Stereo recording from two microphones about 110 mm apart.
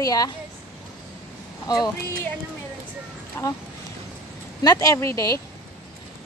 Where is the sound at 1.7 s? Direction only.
35° left (ahead or behind).